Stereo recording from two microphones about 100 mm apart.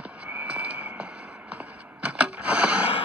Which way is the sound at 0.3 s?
15° right (ahead or behind).